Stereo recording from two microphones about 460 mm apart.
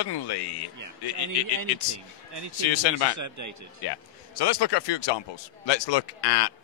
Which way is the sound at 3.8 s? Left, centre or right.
Left.